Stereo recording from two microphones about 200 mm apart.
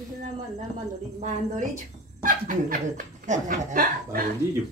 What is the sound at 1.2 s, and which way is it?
Speech, 40° right (ahead or behind).